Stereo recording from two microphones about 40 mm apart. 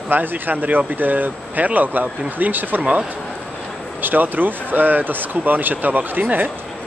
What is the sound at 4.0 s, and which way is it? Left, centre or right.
Speech, right.